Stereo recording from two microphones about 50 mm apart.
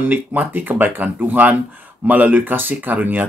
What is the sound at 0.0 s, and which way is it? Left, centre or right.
Speech, right.